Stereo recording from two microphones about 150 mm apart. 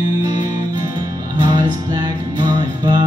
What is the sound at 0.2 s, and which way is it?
Music, 25° right (ahead or behind).